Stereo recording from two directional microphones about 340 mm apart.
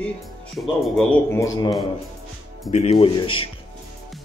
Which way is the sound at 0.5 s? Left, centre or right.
Centre.